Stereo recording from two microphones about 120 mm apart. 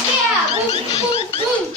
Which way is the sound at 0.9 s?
55° left (ahead or behind).